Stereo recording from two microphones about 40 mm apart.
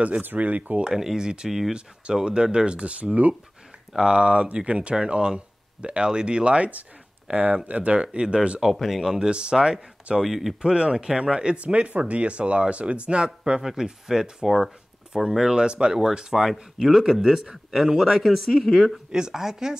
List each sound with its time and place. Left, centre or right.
0.4 s speech: right
0.9 s speech: centre
3.0 s speech: right
3.9 s speech: centre
8.8 s speech: centre
9.3 s speech: right
10.2 s speech: centre
10.6 s speech: right
13.6 s speech: centre
15.5 s speech: right; by 18.9 s centre
19.1 s speech: centre